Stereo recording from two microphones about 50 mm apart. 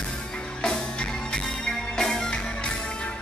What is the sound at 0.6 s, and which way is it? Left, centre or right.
Music, centre.